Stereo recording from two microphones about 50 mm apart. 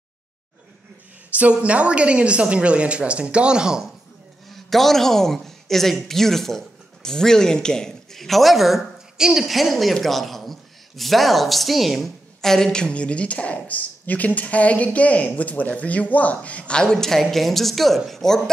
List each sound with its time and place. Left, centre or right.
1.3 s a woman's voice: right
4.5 s a woman's voice: centre